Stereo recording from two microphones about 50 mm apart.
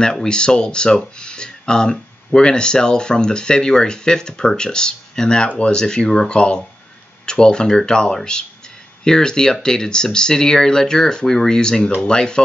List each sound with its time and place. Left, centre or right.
0.0 s speech: centre